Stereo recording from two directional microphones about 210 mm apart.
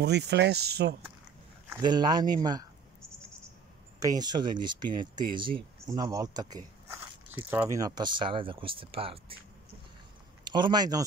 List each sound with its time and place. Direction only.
0.0 s speech: 55° right (ahead or behind)
1.7 s speech: 20° right (ahead or behind)
4.0 s speech: 20° right (ahead or behind)
10.4 s speech: 20° right (ahead or behind)